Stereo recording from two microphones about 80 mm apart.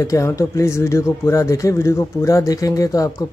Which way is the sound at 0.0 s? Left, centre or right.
Left.